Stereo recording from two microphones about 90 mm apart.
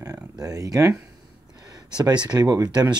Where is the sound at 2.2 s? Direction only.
50° right (ahead or behind).